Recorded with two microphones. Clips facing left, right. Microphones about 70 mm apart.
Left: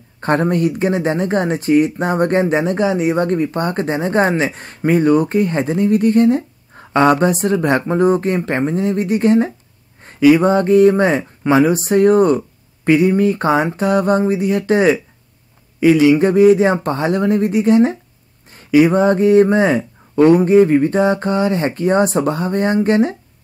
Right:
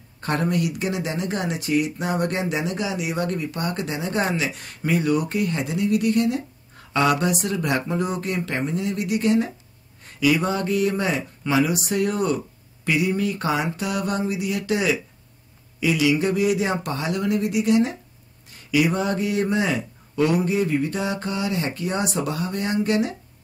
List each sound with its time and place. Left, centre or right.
0.2 s speech: left